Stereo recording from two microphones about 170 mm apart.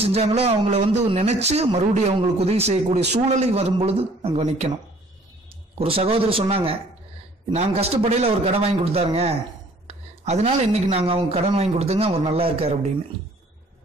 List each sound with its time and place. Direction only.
0.0 s speech: 40° right (ahead or behind)
5.8 s speech: 35° right (ahead or behind)